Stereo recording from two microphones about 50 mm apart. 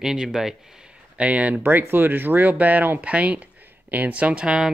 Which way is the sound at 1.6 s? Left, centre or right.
Right.